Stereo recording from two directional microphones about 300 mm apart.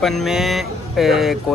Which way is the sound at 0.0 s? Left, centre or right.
Centre.